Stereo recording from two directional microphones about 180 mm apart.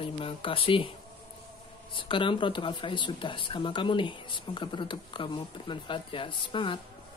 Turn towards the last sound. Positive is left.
turn(degrees=25)  # may be behind; listen again after turning